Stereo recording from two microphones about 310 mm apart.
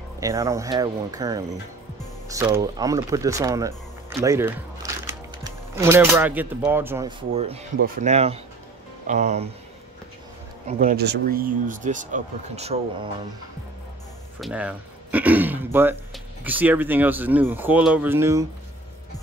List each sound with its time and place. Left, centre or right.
0.2 s speech: centre
10.7 s speech: right
14.4 s speech: centre